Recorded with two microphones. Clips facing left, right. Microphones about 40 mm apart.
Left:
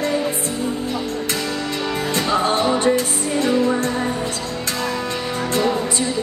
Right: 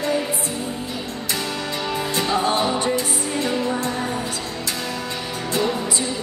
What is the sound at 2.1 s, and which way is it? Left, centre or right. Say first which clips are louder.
Music: left 2 dB; left.